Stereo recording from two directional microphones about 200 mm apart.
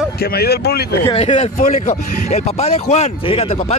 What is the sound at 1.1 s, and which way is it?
Speech, 35° left (ahead or behind).